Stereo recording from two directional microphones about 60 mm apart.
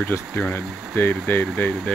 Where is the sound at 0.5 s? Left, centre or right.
Left.